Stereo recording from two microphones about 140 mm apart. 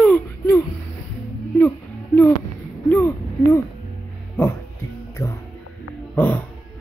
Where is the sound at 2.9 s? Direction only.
15° left (ahead or behind).